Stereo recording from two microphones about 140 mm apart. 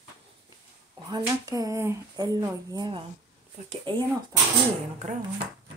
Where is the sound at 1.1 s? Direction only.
30° right (ahead or behind).